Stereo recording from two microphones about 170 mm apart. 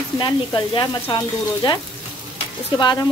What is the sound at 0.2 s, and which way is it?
Speech, 25° left (ahead or behind).